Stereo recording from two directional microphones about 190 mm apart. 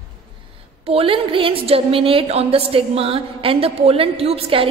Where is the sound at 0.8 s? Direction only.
30° right (ahead or behind).